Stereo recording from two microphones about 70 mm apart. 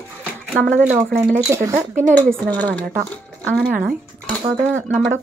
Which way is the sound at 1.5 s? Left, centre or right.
Right.